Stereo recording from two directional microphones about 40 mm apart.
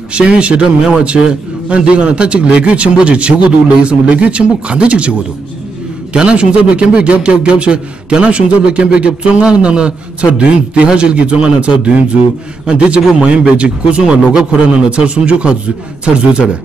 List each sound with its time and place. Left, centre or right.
0.1 s a man's voice: right
1.7 s a man's voice: right